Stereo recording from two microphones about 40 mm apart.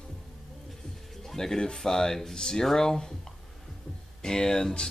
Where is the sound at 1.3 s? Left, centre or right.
Centre.